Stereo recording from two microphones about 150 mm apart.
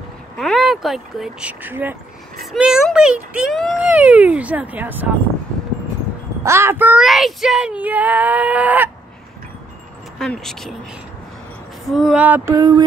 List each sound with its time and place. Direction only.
0.4 s speech: centre (ahead or behind)
2.5 s speech: centre (ahead or behind)
3.8 s child singing: 10° right (ahead or behind)
6.4 s child singing: 20° right (ahead or behind)
10.1 s speech: 5° left (ahead or behind)
11.9 s child singing: 5° right (ahead or behind)
12.5 s speech: 25° right (ahead or behind)